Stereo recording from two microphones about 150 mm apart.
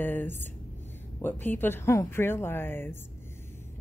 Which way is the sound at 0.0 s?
15° left (ahead or behind).